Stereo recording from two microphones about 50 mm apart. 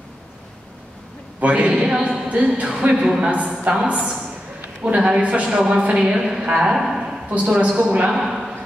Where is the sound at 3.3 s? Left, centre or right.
Right.